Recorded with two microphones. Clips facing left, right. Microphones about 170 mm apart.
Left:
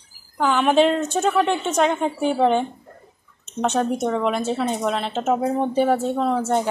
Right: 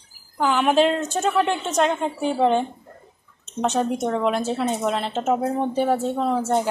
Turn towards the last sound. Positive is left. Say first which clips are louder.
# left 1 dB
turn(degrees=-5)  # may be behind; listen again after turning